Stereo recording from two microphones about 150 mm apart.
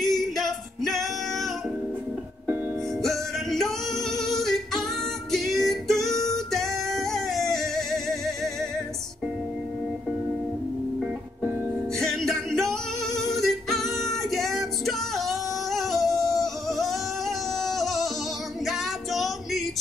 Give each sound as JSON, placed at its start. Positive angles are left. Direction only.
{"t": 0.0, "sound": "male singing", "side_deg": 0}
{"t": 3.0, "sound": "music", "side_deg": 0}
{"t": 12.0, "sound": "music", "side_deg": 0}
{"t": 16.1, "sound": "singing", "side_deg": 25}
{"t": 16.6, "sound": "singing", "side_deg": 0}
{"t": 18.7, "sound": "female singing", "side_deg": 0}